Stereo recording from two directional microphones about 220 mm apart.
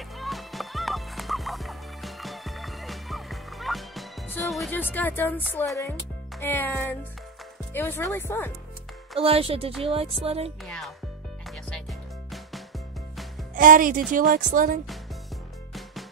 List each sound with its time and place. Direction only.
0.2 s music: centre (ahead or behind)
6.4 s speech: 10° left (ahead or behind)
9.2 s music: 25° right (ahead or behind)
10.6 s music: centre (ahead or behind)
13.6 s a woman's voice: 40° right (ahead or behind)
15.7 s music: centre (ahead or behind)